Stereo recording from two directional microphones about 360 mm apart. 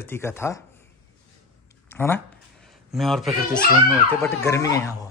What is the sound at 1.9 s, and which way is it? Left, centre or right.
Speech, centre.